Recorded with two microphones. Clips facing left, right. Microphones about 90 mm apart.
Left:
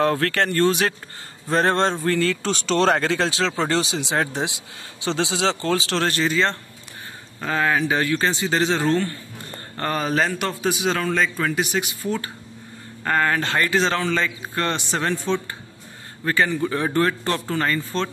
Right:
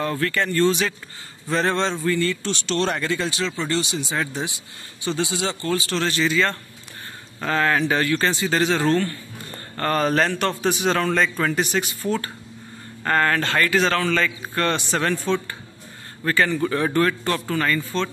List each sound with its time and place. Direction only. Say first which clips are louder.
0.0 s speech: left 3 dB; 75° left (ahead or behind); by 2.0 s 50° left (ahead or behind)
2.0 s speech: left 1 dB; 90° left
4.2 s speech: left 3 dB; 70° left (ahead or behind)
4.7 s speech: left 1 dB; 90° left
6.0 s speech: right 1 dB; 45° left (ahead or behind)
7.3 s speech: right 1 dB; 10° left (ahead or behind)
13.4 s a man's voice: right 1 dB; 20° left (ahead or behind)